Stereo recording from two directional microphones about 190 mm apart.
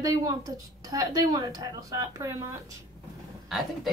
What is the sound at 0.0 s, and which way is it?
A woman's voice, 20° right (ahead or behind).